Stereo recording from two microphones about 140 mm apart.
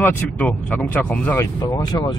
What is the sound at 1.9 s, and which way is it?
Speech, 25° left (ahead or behind).